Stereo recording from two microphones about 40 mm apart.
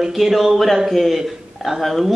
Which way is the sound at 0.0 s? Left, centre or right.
Centre.